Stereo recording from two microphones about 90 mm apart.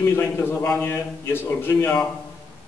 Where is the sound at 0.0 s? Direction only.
25° left (ahead or behind).